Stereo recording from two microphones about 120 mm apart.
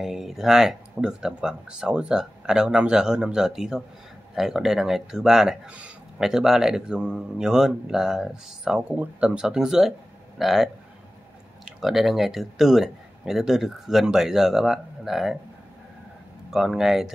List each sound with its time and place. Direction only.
0.0 s speech: 5° right (ahead or behind)
11.8 s speech: centre (ahead or behind)
16.4 s speech: 5° right (ahead or behind)